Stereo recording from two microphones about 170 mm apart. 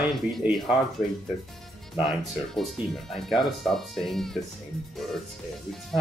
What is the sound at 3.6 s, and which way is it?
Speech, centre (ahead or behind).